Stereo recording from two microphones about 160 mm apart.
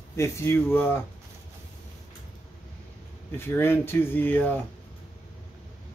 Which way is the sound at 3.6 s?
15° left (ahead or behind).